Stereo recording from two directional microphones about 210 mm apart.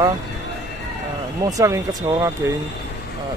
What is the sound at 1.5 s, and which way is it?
Speech, 15° right (ahead or behind).